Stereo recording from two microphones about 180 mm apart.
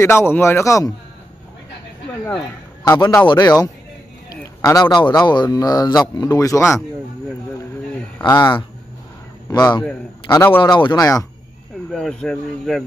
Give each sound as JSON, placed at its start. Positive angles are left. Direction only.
{"t": 0.0, "sound": "a man's voice", "side_deg": 15}
{"t": 2.9, "sound": "a man's voice", "side_deg": 10}
{"t": 8.2, "sound": "a man's voice", "side_deg": 25}
{"t": 10.6, "sound": "a man's voice", "side_deg": 25}
{"t": 11.9, "sound": "a man's voice", "side_deg": 5}